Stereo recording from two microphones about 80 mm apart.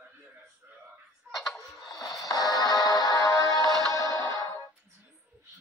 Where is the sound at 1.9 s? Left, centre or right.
Left.